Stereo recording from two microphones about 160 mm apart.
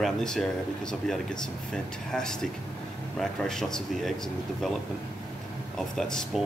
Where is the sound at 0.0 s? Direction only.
5° left (ahead or behind).